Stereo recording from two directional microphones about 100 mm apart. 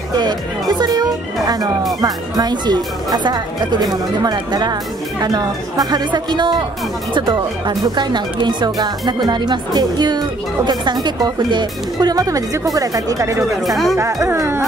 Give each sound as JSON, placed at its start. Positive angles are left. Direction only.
{"t": 0.1, "sound": "speech", "side_deg": -45}
{"t": 13.7, "sound": "speech", "side_deg": 0}
{"t": 14.2, "sound": "speech", "side_deg": -30}